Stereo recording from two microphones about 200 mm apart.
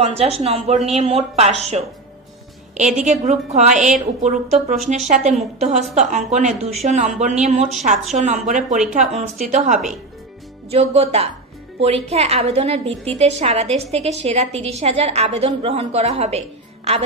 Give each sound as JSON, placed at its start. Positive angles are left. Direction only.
{"t": 0.0, "sound": "a woman's voice", "side_deg": -30}
{"t": 3.1, "sound": "a woman's voice", "side_deg": -35}